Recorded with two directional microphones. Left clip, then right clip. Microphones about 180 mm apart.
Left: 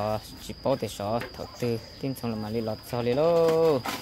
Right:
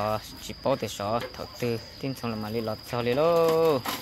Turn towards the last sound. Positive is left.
turn(degrees=15)  # may be behind; listen again after turning